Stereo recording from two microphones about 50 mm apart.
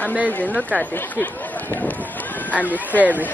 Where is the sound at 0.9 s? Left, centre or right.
Left.